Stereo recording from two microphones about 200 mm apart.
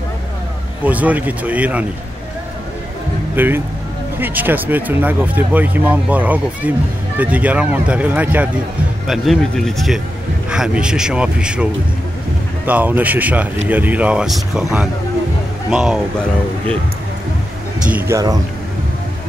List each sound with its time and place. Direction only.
0.8 s speech: 10° right (ahead or behind)
3.3 s speech: 10° right (ahead or behind)
17.9 s speech: 15° right (ahead or behind)